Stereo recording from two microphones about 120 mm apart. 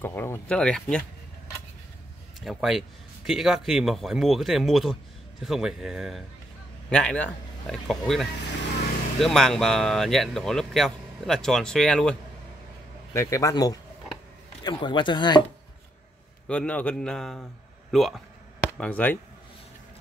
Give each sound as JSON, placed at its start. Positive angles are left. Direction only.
{"t": 0.0, "sound": "speech", "side_deg": 20}
{"t": 0.6, "sound": "speech", "side_deg": 5}
{"t": 2.4, "sound": "speech", "side_deg": -5}
{"t": 6.9, "sound": "speech", "side_deg": 10}
{"t": 13.1, "sound": "speech", "side_deg": 25}
{"t": 16.4, "sound": "speech", "side_deg": 10}
{"t": 18.6, "sound": "speech", "side_deg": 15}